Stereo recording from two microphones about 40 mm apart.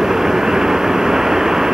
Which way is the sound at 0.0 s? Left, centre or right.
Centre.